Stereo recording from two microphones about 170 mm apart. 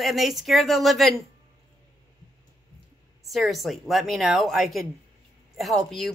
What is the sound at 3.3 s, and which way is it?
Speech, centre (ahead or behind).